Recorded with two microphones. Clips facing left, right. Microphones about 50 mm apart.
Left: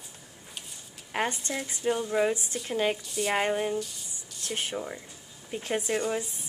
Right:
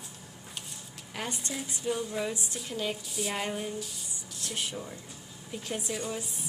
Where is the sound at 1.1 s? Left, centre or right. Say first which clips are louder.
Left 7 dB; left.